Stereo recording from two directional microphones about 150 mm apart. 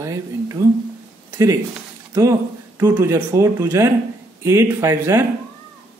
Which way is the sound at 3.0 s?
20° right (ahead or behind).